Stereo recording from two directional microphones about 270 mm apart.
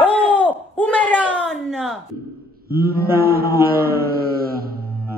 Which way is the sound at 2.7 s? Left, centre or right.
Right.